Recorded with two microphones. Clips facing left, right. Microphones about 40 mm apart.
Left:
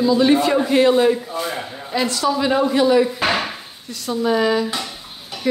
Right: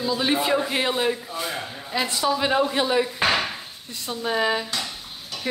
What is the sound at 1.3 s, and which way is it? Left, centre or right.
Speech, centre.